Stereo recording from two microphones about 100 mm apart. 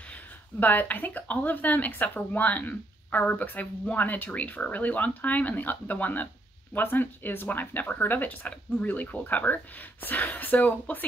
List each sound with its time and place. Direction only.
0.6 s speech: 15° left (ahead or behind)